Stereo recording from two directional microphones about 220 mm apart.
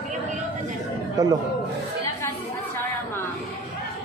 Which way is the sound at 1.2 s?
15° right (ahead or behind).